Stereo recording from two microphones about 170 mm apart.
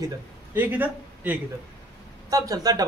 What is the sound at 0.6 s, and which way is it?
Speech, 10° right (ahead or behind).